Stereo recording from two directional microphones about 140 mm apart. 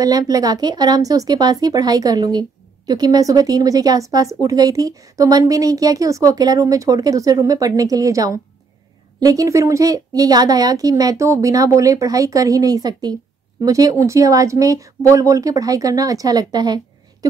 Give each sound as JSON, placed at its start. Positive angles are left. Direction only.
{"t": 0.0, "sound": "speech", "side_deg": -25}